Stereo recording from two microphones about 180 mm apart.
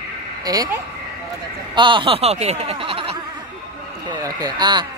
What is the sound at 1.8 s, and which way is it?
Speech, 25° right (ahead or behind).